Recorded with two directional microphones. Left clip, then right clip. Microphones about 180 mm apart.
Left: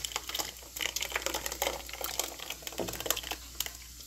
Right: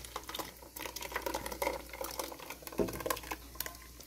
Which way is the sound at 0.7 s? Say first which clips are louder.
Left 7 dB; 5° right (ahead or behind).